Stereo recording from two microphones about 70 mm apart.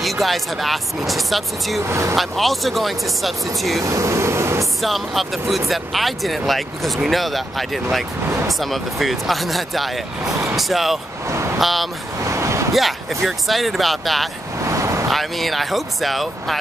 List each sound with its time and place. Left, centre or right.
0.0 s speech: centre
1.9 s speech: right
2.1 s speech: centre
3.8 s air conditioning: right
4.8 s speech: centre
12.3 s a sound: right
12.7 s speech: centre
14.7 s vehicle: right
15.0 s speech: centre